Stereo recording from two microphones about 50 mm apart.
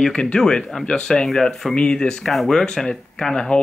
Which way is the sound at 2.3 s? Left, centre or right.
Centre.